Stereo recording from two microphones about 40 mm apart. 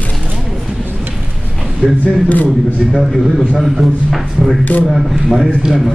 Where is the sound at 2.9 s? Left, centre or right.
Centre.